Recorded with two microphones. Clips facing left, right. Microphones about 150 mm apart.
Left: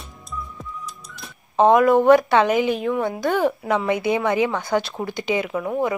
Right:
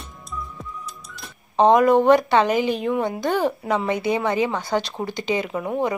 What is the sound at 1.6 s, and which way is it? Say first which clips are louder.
A woman's voice: left 1 dB; 5° left (ahead or behind).